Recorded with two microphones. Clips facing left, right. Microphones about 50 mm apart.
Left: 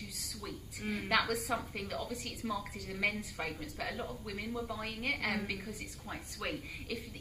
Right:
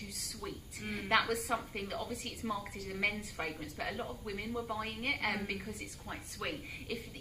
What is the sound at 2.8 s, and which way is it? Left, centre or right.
Speech, right.